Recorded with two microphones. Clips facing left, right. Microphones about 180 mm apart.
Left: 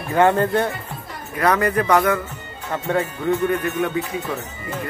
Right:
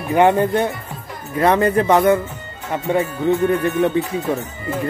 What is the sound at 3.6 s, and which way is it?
Speech, 30° right (ahead or behind).